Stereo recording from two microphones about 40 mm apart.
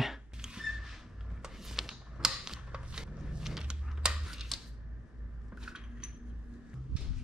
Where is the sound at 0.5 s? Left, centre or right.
Centre.